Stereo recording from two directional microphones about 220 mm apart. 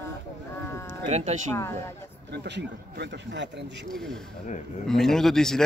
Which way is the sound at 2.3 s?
50° right (ahead or behind).